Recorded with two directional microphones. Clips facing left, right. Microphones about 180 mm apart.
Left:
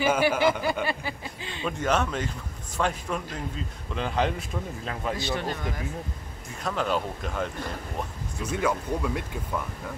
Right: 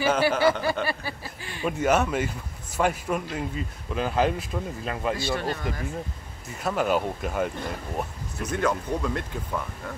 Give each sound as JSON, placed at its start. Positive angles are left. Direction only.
{"t": 0.0, "sound": "speech", "side_deg": 10}
{"t": 1.6, "sound": "a man's voice", "side_deg": -10}
{"t": 5.1, "sound": "speech", "side_deg": 20}
{"t": 6.6, "sound": "speech", "side_deg": -10}
{"t": 8.4, "sound": "speech", "side_deg": 10}